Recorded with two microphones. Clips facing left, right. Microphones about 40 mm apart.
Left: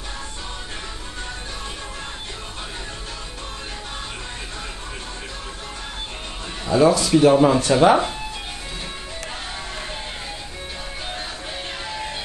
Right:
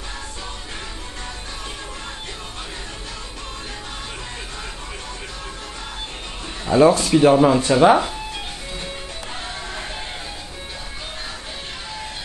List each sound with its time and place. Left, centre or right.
6.7 s speech: right
7.3 s speech: centre